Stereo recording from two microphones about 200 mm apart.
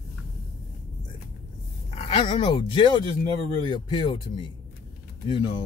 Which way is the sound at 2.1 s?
25° left (ahead or behind).